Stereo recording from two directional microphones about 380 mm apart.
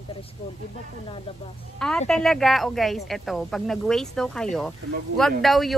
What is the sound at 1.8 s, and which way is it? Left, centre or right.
A woman's voice, centre.